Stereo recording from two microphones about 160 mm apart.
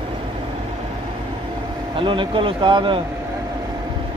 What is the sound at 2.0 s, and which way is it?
Speech, 30° right (ahead or behind).